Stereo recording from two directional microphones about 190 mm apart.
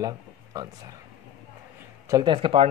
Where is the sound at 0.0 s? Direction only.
20° right (ahead or behind).